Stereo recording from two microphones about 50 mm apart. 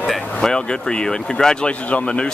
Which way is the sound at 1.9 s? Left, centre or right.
Left.